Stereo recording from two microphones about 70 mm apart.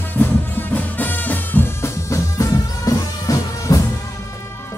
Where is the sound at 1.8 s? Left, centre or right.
Left.